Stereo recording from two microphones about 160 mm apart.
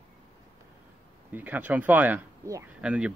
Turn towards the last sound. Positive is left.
turn(degrees=-5)  # may be behind; listen again after turning